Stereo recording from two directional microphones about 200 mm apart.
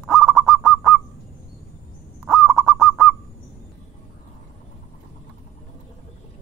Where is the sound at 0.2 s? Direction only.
Centre (ahead or behind).